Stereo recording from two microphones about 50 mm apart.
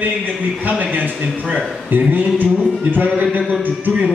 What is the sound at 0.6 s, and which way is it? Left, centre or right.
A man's voice, right.